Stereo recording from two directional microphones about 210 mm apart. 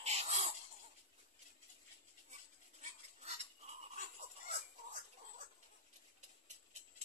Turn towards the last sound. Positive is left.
turn(degrees=-35)  # may be behind; listen again after turning